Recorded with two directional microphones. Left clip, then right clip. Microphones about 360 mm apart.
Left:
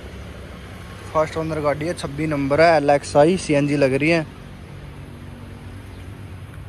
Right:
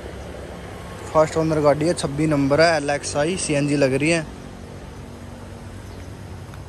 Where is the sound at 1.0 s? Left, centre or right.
Centre.